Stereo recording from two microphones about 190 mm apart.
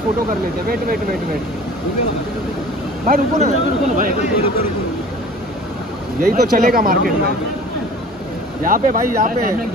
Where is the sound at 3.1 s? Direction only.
40° right (ahead or behind).